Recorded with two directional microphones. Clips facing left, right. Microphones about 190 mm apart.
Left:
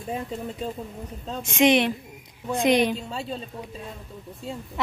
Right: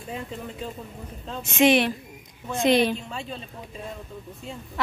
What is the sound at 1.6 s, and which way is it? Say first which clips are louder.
A woman's voice: even; 20° left (ahead or behind).